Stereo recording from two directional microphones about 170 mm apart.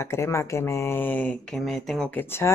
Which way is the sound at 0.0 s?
15° left (ahead or behind).